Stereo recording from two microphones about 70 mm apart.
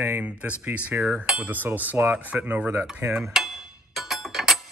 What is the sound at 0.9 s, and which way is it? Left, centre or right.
A man's voice, right.